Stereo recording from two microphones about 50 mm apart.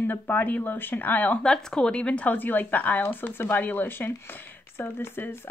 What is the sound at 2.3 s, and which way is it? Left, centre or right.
Speech, left.